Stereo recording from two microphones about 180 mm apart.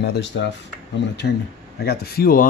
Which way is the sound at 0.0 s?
70° left (ahead or behind).